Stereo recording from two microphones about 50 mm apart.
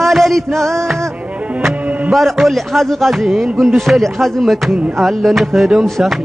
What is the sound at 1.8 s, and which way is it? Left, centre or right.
Music, right.